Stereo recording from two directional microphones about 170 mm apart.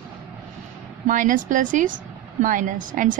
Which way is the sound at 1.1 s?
50° right (ahead or behind).